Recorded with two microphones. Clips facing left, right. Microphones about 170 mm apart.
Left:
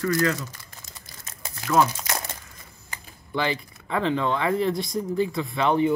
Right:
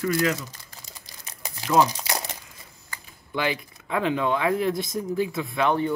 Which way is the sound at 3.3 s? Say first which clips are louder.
Left 1 dB; 5° right (ahead or behind).